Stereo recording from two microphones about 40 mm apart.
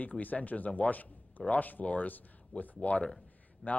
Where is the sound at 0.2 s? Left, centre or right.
Left.